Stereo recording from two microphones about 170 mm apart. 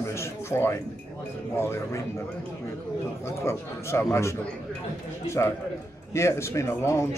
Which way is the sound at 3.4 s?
15° left (ahead or behind).